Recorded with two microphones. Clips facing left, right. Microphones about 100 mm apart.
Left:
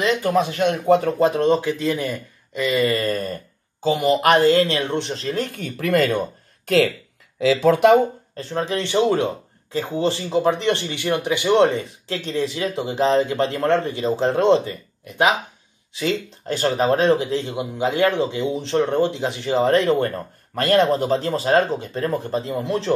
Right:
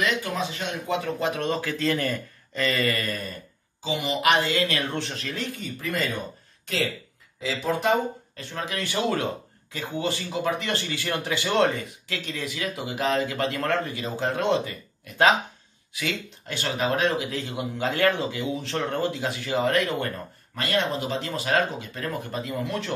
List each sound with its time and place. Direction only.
0.0 s speech: 35° left (ahead or behind)
0.4 s speech: 60° left (ahead or behind)
1.3 s speech: 30° left (ahead or behind); by 2.8 s 15° left (ahead or behind)
2.8 s speech: 30° left (ahead or behind)
3.1 s speech: 45° left (ahead or behind); by 5.3 s 25° left (ahead or behind)
5.3 s speech: 45° left (ahead or behind)
5.8 s speech: 70° left (ahead or behind)
7.3 s speech: 90° left
8.4 s speech: 35° left (ahead or behind)
15.9 s speech: 30° left (ahead or behind)
20.5 s speech: 45° left (ahead or behind); by 22.9 s 30° left (ahead or behind)